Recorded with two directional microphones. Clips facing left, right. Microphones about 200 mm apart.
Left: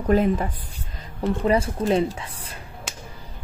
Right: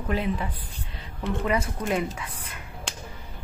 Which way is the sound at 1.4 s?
30° left (ahead or behind).